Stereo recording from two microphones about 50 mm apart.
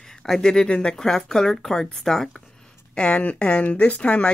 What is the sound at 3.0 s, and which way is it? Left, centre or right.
Speech, left.